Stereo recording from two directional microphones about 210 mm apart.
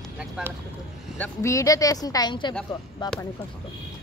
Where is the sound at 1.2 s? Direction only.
15° left (ahead or behind).